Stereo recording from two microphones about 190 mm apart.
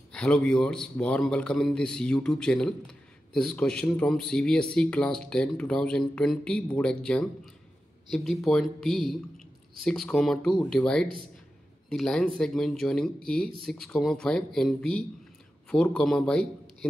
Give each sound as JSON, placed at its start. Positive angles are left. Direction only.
{"t": 0.1, "sound": "a man's voice", "side_deg": 5}